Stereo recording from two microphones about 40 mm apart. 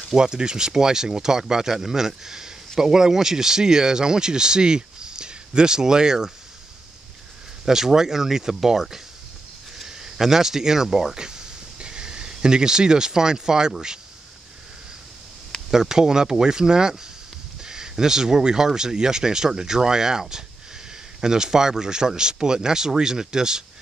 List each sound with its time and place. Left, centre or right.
0.1 s speech: centre
7.6 s speech: centre
15.7 s speech: centre